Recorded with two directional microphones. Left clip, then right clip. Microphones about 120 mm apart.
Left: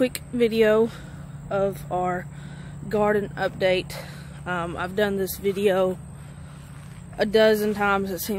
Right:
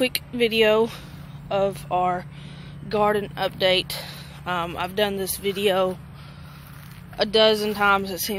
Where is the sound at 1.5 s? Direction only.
15° left (ahead or behind).